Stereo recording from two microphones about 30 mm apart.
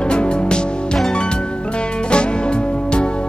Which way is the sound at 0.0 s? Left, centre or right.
Left.